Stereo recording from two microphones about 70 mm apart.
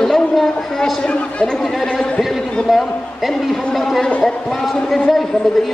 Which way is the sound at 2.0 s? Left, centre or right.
Centre.